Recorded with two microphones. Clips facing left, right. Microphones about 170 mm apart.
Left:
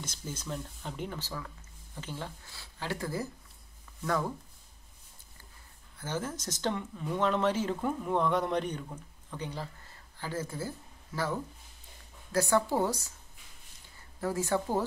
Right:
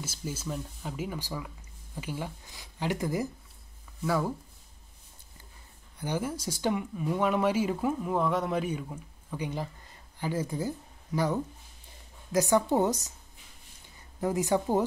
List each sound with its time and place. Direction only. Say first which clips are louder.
0.0 s speech: right 4 dB; 5° right (ahead or behind)
5.9 s speech: right 4 dB; 15° right (ahead or behind)
14.2 s speech: right 3 dB; 15° right (ahead or behind)